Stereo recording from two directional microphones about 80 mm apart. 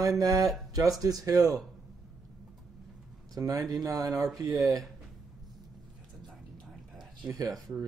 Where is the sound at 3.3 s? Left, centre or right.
Right.